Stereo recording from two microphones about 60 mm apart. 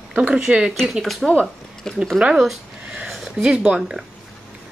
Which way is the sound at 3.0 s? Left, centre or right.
Centre.